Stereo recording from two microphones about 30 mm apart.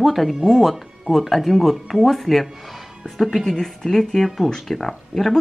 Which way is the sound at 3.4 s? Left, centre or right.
Centre.